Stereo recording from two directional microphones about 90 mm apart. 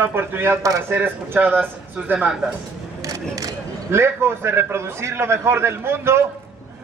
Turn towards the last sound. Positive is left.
turn(degrees=-30)  # may be behind; listen again after turning